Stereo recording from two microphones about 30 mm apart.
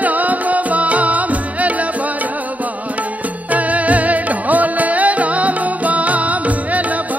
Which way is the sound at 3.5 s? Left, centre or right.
Right.